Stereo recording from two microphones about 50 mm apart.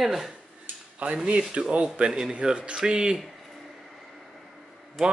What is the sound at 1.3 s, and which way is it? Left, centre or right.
Speech, right.